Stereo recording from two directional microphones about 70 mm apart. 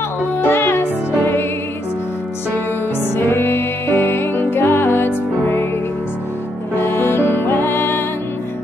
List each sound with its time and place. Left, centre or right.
0.4 s music: left
3.2 s music: left
6.8 s music: left